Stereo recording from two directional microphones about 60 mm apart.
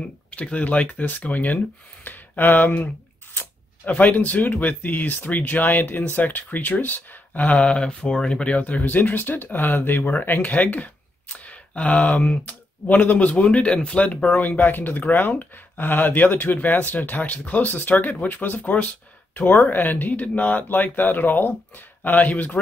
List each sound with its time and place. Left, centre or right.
0.0 s speech: left